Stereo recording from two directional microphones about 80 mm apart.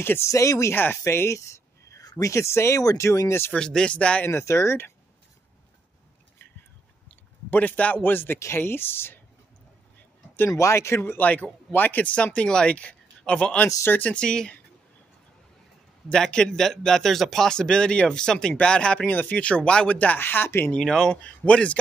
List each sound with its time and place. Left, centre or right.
0.0 s speech: left
0.3 s speech: left
1.0 s a sound: left
2.0 s speech: left
3.5 s speech: centre
4.3 s speech: left
7.1 s speech: centre
10.5 s speech: left
11.0 s speech: left
13.8 s speech: left
14.1 s speech: centre
16.1 s speech: centre; by 20.7 s left
20.7 s speech: centre